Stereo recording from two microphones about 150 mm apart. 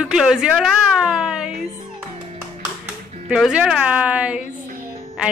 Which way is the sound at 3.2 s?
5° right (ahead or behind).